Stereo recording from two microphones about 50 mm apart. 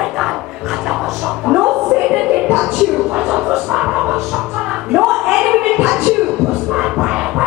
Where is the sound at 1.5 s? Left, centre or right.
Centre.